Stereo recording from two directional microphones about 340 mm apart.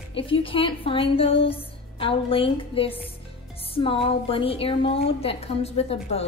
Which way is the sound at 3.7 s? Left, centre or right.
Centre.